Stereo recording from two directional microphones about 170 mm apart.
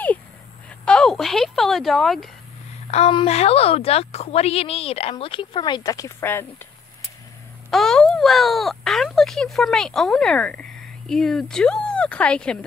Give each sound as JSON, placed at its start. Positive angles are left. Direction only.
{"t": 0.8, "sound": "a sound", "side_deg": 5}
{"t": 2.9, "sound": "a woman's voice", "side_deg": 35}
{"t": 7.7, "sound": "speech", "side_deg": 5}